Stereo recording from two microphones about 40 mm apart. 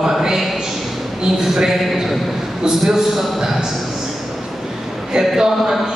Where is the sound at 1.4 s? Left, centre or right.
Centre.